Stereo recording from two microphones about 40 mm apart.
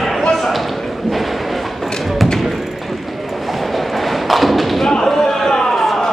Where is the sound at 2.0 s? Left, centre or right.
Centre.